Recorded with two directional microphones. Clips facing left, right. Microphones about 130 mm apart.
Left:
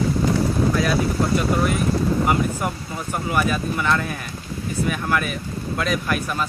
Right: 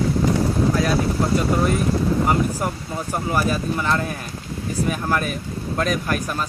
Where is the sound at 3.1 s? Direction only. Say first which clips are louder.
Even; 35° right (ahead or behind).